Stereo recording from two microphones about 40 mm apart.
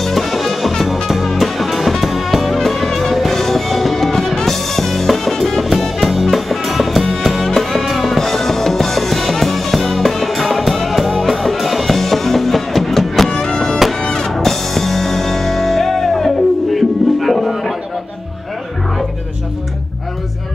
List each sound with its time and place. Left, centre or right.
0.0 s music: centre
13.3 s music: centre
14.0 s drum kit: centre
14.3 s music: centre